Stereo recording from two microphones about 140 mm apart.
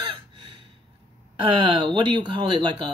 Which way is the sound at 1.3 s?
40° right (ahead or behind).